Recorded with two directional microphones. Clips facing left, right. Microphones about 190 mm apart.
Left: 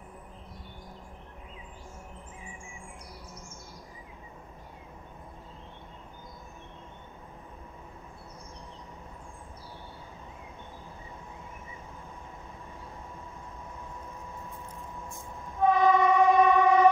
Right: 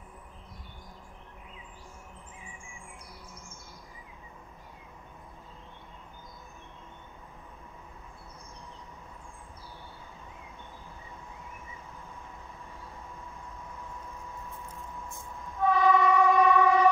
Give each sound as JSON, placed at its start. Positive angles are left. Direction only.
{"t": 15.6, "sound": "train", "side_deg": 20}